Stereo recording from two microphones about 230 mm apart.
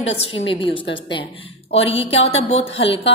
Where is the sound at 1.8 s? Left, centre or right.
Left.